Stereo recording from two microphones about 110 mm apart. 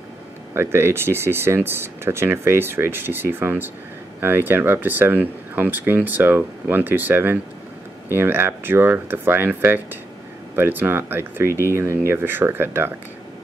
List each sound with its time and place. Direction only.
0.6 s speech: 20° right (ahead or behind)